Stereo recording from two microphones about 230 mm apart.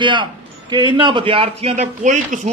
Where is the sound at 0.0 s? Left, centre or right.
Centre.